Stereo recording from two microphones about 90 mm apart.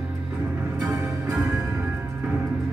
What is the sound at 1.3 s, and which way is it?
Music, 10° right (ahead or behind).